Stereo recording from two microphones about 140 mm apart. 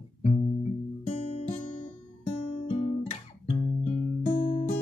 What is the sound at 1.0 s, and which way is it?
Music, 45° left (ahead or behind).